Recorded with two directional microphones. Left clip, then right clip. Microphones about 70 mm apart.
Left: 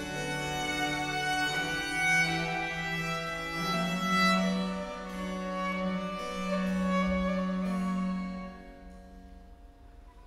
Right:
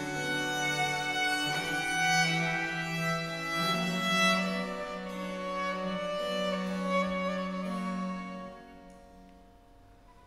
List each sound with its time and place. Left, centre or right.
0.2 s music: centre
3.2 s music: centre
3.5 s music: centre
4.6 s music: centre
5.4 s music: centre
7.7 s music: right